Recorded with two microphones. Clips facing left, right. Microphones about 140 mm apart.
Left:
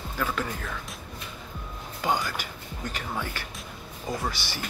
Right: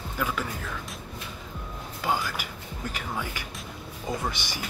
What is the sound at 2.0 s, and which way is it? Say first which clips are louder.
Speech: left 1 dB; centre (ahead or behind).